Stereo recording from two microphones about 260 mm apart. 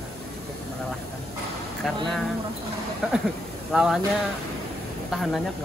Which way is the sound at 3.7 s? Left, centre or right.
Centre.